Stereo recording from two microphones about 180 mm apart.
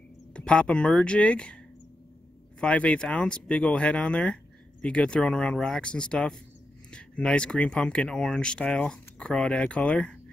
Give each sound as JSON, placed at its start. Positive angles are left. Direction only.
{"t": 0.3, "sound": "speech", "side_deg": 5}
{"t": 2.6, "sound": "speech", "side_deg": 5}